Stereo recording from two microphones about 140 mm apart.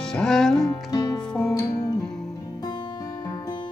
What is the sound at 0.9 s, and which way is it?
Music, 25° left (ahead or behind).